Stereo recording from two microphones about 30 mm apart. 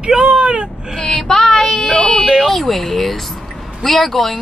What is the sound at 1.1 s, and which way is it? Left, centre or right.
Child singing, centre.